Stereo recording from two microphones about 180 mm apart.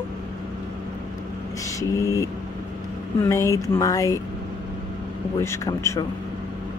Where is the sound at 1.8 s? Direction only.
15° left (ahead or behind).